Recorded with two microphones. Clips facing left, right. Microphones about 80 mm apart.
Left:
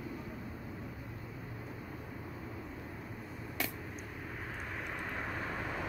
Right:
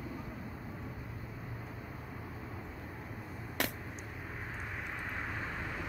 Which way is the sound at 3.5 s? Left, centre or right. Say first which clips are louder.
Right 3 dB; right.